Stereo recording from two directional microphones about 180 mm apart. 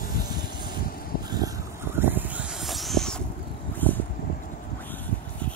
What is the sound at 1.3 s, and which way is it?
Vehicle, 20° right (ahead or behind).